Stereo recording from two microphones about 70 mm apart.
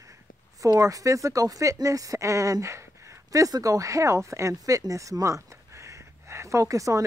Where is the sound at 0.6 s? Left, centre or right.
Right.